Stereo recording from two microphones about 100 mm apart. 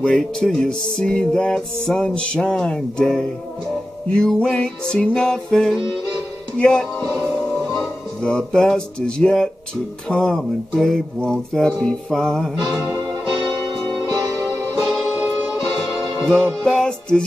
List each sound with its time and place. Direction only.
0.0 s music: 10° left (ahead or behind)
8.2 s music: 5° left (ahead or behind)
13.8 s music: 40° right (ahead or behind)
14.7 s music: 5° left (ahead or behind)